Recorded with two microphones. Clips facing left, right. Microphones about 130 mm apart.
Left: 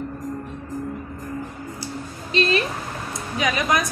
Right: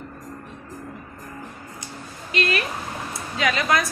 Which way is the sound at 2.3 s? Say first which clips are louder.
Left 3 dB; 30° left (ahead or behind).